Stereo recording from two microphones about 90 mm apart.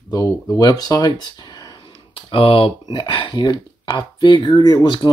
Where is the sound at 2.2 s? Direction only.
85° left.